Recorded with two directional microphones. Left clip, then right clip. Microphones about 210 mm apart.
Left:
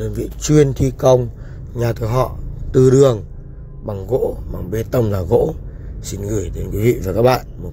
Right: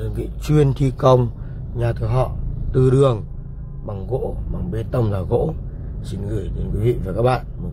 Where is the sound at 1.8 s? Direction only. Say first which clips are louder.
Left 4 dB; 20° left (ahead or behind).